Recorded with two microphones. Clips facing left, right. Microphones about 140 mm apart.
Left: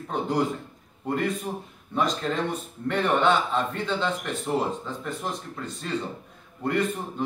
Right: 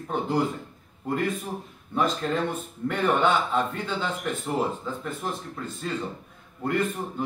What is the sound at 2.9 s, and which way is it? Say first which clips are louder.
Speech: left 1 dB; 10° right (ahead or behind).